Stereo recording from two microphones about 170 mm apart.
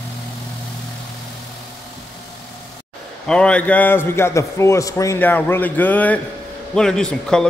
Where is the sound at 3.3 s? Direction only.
5° left (ahead or behind).